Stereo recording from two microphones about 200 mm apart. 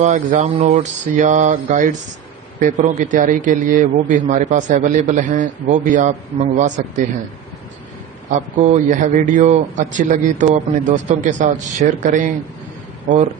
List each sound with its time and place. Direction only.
0.0 s a man's voice: 35° right (ahead or behind)
8.3 s a man's voice: 35° right (ahead or behind)